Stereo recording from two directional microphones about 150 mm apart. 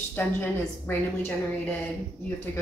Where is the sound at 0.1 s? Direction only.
10° left (ahead or behind).